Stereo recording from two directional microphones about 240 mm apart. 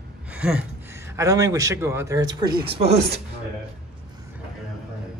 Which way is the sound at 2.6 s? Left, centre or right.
Right.